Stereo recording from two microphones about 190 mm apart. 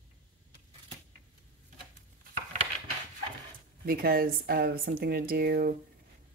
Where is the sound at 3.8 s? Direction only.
50° right (ahead or behind).